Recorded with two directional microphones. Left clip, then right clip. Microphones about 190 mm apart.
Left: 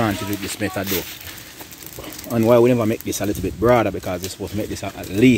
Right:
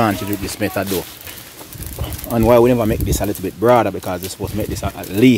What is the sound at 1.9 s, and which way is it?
Speech, 5° right (ahead or behind).